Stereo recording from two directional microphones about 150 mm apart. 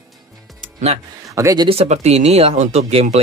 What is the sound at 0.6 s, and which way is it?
Music, 50° right (ahead or behind).